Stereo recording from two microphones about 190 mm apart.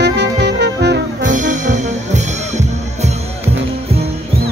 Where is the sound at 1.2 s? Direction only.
40° right (ahead or behind).